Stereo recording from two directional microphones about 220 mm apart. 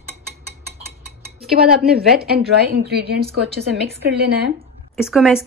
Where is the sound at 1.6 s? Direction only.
45° right (ahead or behind).